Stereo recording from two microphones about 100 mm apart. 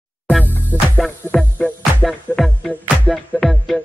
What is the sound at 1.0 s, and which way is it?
Music, 5° left (ahead or behind).